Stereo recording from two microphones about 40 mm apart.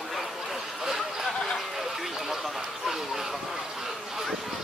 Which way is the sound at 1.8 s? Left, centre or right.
Centre.